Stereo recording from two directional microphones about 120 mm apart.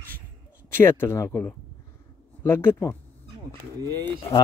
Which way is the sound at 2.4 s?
20° left (ahead or behind).